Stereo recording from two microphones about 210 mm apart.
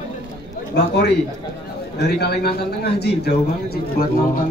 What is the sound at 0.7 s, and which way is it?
A man's voice, 50° left (ahead or behind).